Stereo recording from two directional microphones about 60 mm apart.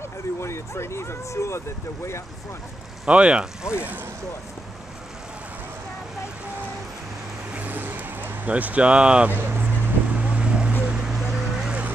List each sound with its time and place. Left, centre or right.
0.4 s speech: left
3.1 s speech: centre
7.5 s vehicle: right
9.3 s vehicle: right
10.2 s vehicle: centre